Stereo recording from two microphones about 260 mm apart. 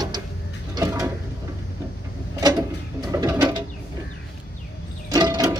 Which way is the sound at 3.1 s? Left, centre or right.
Centre.